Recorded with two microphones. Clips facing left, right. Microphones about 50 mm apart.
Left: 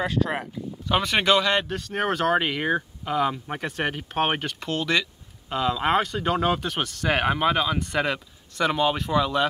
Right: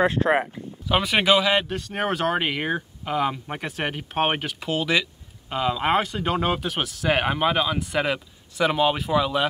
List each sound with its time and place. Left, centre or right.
0.0 s speech: right
0.8 s speech: centre